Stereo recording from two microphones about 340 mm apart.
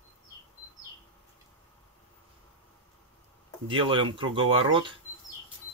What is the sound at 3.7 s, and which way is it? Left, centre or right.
Speech, centre.